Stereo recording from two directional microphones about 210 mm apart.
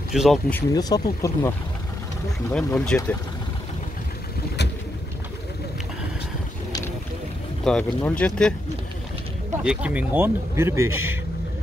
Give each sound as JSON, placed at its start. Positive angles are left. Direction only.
{"t": 0.1, "sound": "speech", "side_deg": 0}
{"t": 0.5, "sound": "speech", "side_deg": 15}
{"t": 2.5, "sound": "speech", "side_deg": 5}
{"t": 7.6, "sound": "speech", "side_deg": 5}
{"t": 9.6, "sound": "speech", "side_deg": -5}